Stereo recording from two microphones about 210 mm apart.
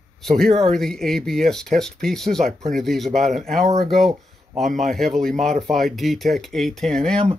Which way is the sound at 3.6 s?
30° right (ahead or behind).